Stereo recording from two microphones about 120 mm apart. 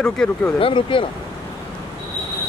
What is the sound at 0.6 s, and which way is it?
Speech, 45° left (ahead or behind).